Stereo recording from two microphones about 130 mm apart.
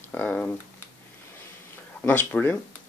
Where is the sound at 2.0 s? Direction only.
10° left (ahead or behind).